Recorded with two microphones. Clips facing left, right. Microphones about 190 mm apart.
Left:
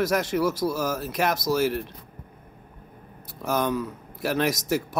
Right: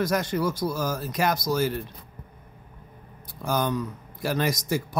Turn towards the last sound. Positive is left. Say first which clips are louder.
# left 2 dB
turn(degrees=5)  # may be behind; listen again after turning